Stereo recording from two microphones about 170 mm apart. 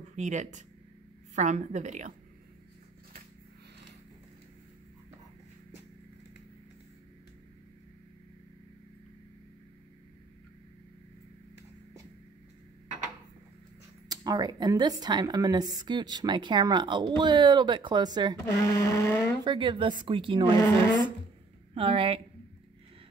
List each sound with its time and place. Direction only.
0.1 s a woman's voice: 45° right (ahead or behind)
14.0 s speech: 25° right (ahead or behind)
18.4 s a sound: 20° left (ahead or behind)
19.4 s speech: 30° right (ahead or behind)
20.6 s a sound: 20° left (ahead or behind)
21.7 s a woman's voice: 35° right (ahead or behind)